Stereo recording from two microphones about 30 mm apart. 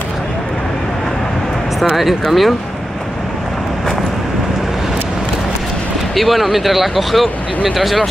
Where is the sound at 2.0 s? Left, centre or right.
Centre.